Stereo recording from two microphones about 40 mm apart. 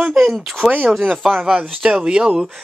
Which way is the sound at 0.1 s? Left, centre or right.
Centre.